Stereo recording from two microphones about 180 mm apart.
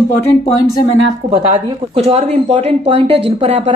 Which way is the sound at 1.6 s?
35° right (ahead or behind).